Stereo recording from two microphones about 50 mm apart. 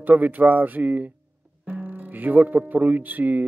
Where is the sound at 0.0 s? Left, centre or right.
Right.